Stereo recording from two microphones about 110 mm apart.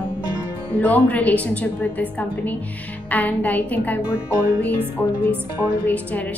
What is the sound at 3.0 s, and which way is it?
Speech, 15° left (ahead or behind).